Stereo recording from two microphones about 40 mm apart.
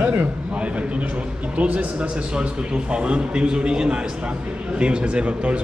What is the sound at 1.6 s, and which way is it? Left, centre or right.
Speech, right.